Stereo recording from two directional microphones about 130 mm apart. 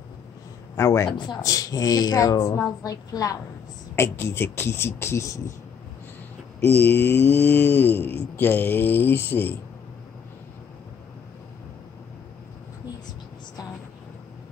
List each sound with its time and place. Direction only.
0.7 s speech: 20° left (ahead or behind)
1.1 s speech: 35° left (ahead or behind)
6.6 s speech: 15° left (ahead or behind)